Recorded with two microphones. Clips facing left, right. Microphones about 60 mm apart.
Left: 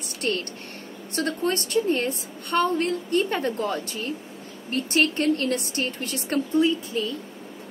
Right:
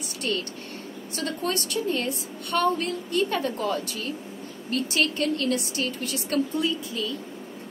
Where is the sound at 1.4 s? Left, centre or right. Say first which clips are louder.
Left 4 dB; left.